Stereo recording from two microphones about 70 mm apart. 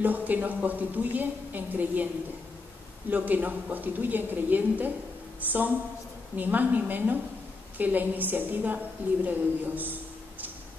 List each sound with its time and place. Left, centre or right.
0.0 s a woman's voice: right
3.1 s a woman's voice: right
6.3 s a woman's voice: right